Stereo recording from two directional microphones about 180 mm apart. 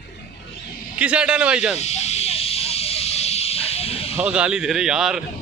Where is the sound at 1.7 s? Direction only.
35° left (ahead or behind).